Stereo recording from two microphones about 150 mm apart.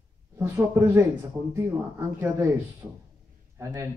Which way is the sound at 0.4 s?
15° right (ahead or behind).